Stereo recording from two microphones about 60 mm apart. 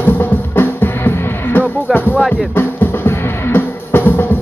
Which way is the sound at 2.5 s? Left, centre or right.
Left.